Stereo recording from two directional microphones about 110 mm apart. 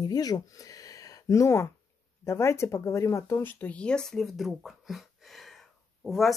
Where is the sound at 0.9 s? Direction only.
30° left (ahead or behind).